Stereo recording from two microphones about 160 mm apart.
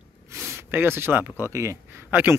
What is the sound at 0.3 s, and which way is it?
Speech, 15° right (ahead or behind).